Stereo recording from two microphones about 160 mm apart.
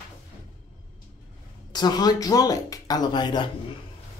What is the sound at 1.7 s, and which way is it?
Speech, 25° left (ahead or behind).